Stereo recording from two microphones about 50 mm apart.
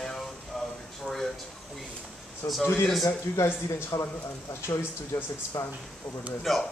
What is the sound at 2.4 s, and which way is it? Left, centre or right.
Speech, left.